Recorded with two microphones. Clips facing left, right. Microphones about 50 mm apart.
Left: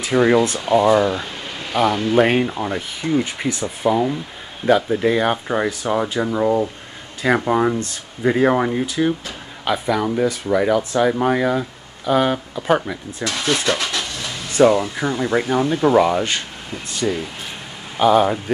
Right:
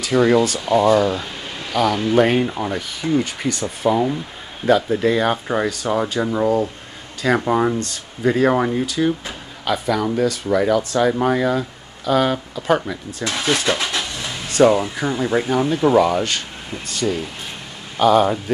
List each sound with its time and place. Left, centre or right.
0.0 s speech: centre
2.0 s speech: centre
3.0 s speech: centre
7.8 s speech: centre
8.5 s speech: centre
8.7 s speech: centre
13.2 s speech: centre
13.9 s a sound: centre
14.6 s speech: centre